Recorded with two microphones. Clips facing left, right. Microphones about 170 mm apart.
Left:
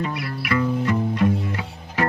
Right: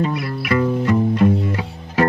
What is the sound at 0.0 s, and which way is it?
Music, 30° right (ahead or behind).